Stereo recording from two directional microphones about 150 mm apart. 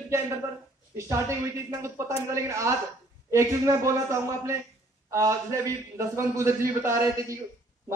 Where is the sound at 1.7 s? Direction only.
20° right (ahead or behind).